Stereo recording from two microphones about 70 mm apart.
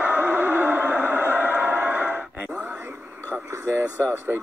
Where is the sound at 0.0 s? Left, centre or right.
Right.